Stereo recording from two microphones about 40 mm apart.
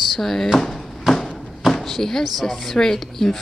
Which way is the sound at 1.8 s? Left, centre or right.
Centre.